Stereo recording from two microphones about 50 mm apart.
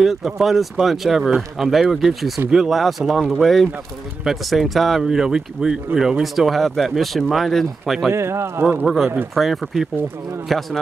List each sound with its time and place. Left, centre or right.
0.0 s speech: centre
8.1 s speech: right
8.8 s speech: centre